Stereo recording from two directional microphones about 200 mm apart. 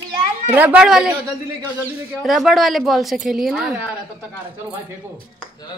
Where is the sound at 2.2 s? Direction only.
Centre (ahead or behind).